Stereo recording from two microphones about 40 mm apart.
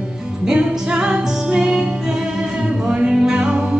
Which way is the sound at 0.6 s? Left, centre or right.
Right.